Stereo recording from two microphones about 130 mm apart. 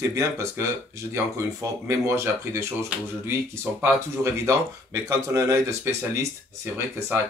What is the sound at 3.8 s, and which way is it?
Speech, 20° right (ahead or behind).